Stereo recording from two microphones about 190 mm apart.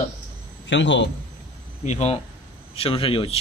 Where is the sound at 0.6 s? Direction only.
75° left (ahead or behind).